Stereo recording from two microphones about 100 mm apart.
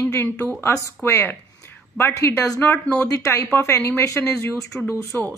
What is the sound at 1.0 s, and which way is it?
A woman's voice, 25° left (ahead or behind).